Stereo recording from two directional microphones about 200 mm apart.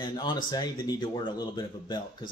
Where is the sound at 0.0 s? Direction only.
20° left (ahead or behind).